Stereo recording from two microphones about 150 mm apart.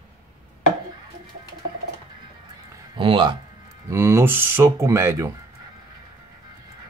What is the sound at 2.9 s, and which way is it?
Speech, 35° right (ahead or behind).